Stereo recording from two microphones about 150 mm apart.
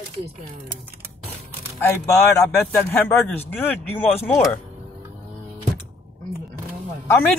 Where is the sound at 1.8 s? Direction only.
15° left (ahead or behind).